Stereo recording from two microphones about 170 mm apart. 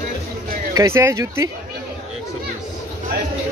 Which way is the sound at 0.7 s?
15° right (ahead or behind).